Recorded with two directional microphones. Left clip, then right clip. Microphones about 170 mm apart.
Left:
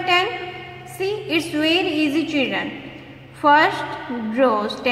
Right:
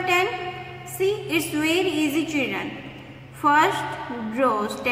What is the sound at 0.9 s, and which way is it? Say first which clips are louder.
A woman's voice: left 1 dB; 40° left (ahead or behind).